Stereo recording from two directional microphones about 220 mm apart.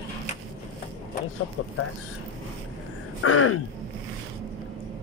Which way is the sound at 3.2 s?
75° left (ahead or behind).